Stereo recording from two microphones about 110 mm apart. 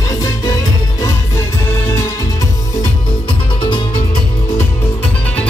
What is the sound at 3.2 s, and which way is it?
Music, 50° left (ahead or behind).